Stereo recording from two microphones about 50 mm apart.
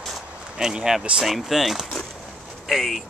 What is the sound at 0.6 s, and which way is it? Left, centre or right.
Speech, centre.